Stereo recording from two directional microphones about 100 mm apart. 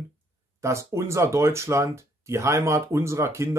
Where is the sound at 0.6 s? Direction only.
30° right (ahead or behind).